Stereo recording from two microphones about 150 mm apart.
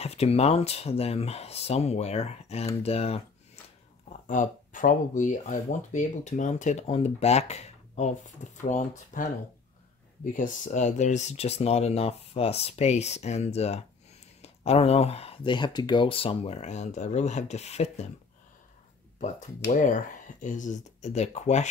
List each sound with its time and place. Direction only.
0.0 s speech: 45° left (ahead or behind)
4.3 s speech: 60° left (ahead or behind)
8.6 s speech: 55° left (ahead or behind)
19.1 s speech: 55° left (ahead or behind)